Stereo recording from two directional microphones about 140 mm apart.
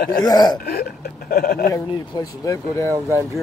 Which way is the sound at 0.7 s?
90° left.